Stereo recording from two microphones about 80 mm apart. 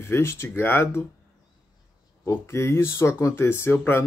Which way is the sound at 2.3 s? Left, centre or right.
Left.